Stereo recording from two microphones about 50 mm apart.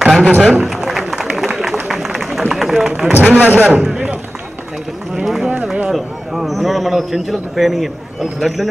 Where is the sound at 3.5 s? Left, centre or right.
Right.